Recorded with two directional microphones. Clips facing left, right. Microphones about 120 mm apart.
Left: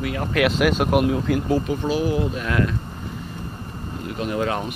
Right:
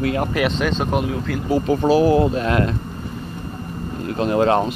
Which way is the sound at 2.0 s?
85° right.